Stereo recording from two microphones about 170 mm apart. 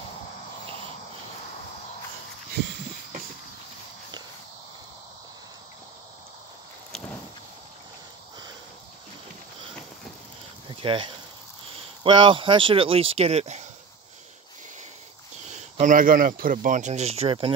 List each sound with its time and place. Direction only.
10.7 s speech: 30° right (ahead or behind)
15.4 s speech: 45° right (ahead or behind)